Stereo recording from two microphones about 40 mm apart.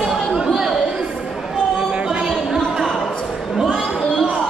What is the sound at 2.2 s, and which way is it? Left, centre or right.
Chatter, centre.